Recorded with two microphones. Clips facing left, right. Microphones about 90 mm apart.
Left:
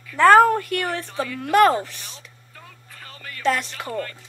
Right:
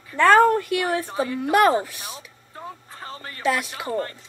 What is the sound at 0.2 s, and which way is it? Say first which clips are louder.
Speech: left 2 dB; centre (ahead or behind).